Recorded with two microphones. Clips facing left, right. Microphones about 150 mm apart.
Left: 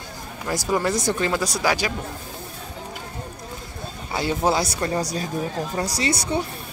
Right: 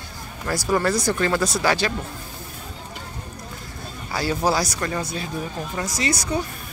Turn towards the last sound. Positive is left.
turn(degrees=30)  # may be behind; listen again after turning